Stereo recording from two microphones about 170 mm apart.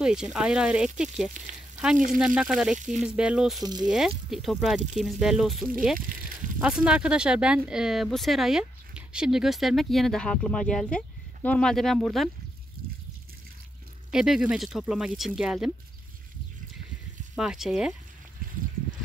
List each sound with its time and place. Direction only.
0.0 s speech: 5° right (ahead or behind)
2.8 s speech: 45° right (ahead or behind)
3.1 s speech: 5° right (ahead or behind)
3.6 s speech: 25° right (ahead or behind)
3.9 s speech: centre (ahead or behind)
14.1 s speech: 5° right (ahead or behind)
17.4 s speech: 5° right (ahead or behind)